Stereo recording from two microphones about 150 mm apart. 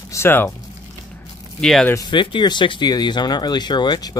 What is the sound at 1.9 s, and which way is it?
Speech, 30° left (ahead or behind).